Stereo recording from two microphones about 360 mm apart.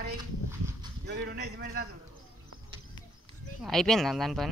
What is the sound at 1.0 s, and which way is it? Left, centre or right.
Speech, right.